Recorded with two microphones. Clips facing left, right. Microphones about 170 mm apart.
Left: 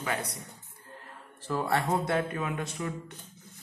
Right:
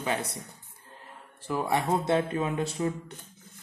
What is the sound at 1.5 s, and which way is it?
A man's voice, 15° right (ahead or behind).